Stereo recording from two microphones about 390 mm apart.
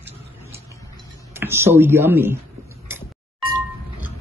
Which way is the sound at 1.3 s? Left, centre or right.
Centre.